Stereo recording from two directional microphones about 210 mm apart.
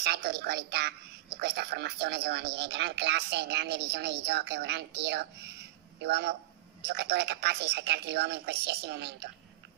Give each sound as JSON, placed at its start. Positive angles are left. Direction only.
{"t": 0.0, "sound": "a woman's voice", "side_deg": -50}